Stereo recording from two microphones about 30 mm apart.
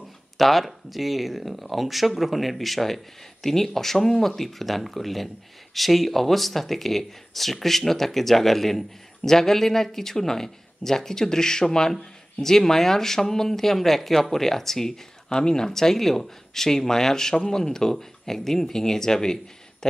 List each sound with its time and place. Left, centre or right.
0.4 s speech: centre
15.2 s speech: left
15.7 s speech: centre